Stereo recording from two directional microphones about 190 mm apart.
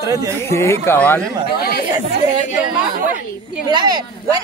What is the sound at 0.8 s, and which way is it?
Speech, 10° left (ahead or behind).